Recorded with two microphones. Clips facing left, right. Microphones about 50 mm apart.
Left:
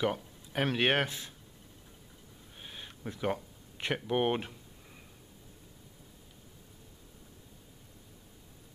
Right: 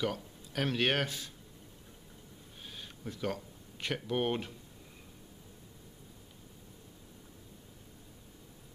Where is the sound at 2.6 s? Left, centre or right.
Left.